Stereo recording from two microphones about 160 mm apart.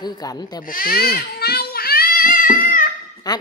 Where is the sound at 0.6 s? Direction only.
65° left (ahead or behind).